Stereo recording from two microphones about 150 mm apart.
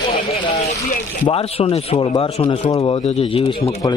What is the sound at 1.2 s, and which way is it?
Speech, 40° left (ahead or behind).